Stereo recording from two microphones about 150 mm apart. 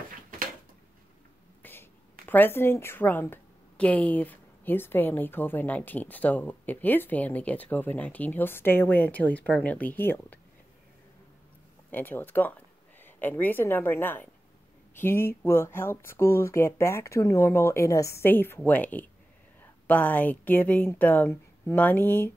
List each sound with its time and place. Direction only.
1.6 s a woman's voice: 15° left (ahead or behind)
11.9 s a woman's voice: 15° left (ahead or behind)